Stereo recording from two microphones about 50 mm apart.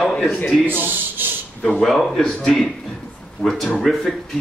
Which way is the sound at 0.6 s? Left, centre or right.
Right.